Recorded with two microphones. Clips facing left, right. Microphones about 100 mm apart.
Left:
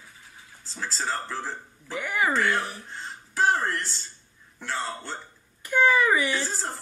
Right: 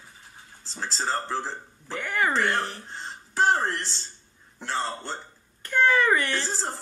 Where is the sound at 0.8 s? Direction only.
30° right (ahead or behind).